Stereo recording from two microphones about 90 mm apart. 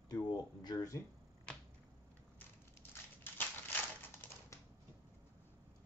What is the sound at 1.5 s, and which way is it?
Finger snapping, 10° left (ahead or behind).